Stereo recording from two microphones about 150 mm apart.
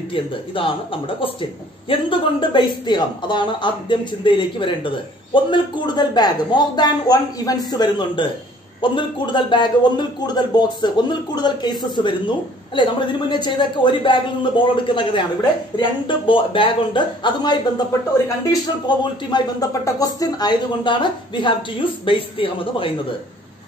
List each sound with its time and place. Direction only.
0.1 s a man's voice: 35° left (ahead or behind)